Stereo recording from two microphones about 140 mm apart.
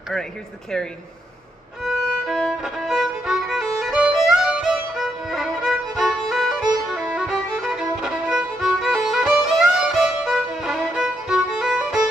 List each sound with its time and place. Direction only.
1.8 s violin: centre (ahead or behind)